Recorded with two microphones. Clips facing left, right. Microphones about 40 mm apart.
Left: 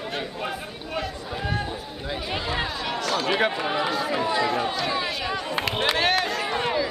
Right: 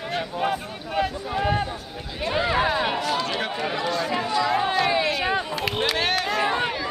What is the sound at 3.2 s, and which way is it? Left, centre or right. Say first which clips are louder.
Chatter: left 3 dB; centre.